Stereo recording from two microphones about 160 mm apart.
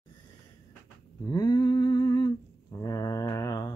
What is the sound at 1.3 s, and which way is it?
Humming, 25° left (ahead or behind).